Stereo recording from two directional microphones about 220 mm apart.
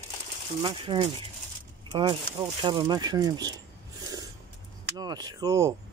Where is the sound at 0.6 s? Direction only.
20° right (ahead or behind).